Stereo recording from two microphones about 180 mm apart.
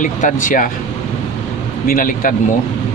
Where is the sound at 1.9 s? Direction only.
50° left (ahead or behind).